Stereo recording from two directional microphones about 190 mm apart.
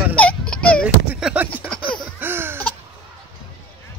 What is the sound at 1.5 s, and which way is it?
Baby laughter, 5° left (ahead or behind).